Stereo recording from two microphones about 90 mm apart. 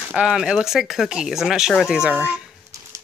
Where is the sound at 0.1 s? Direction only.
10° right (ahead or behind).